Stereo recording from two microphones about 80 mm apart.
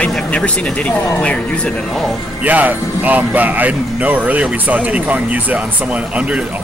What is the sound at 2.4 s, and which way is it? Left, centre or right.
Speech, centre.